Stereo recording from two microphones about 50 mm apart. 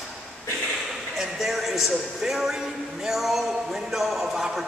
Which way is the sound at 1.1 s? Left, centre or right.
Centre.